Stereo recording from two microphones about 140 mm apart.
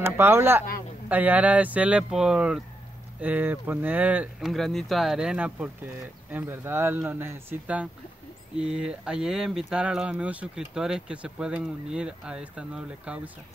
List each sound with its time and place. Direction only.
0.0 s speech: 15° right (ahead or behind)